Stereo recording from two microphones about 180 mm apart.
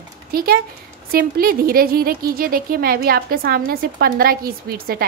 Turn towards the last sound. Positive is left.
turn(degrees=-55)  # may be behind; listen again after turning